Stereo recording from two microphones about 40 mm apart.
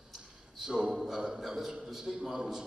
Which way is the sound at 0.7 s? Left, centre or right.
Centre.